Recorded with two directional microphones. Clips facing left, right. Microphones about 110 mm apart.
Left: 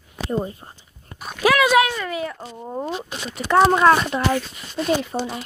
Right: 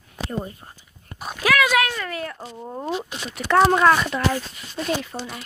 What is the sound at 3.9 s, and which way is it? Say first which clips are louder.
Speech: left 2 dB; 25° left (ahead or behind).